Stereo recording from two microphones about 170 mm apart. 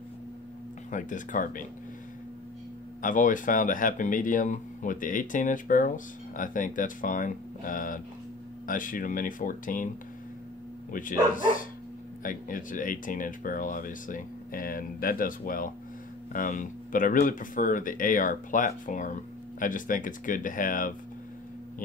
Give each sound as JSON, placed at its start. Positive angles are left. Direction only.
{"t": 0.9, "sound": "speech", "side_deg": 50}
{"t": 3.0, "sound": "speech", "side_deg": 50}
{"t": 10.9, "sound": "speech", "side_deg": 50}